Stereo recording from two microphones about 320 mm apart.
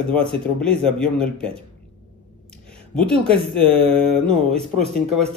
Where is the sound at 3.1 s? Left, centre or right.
Centre.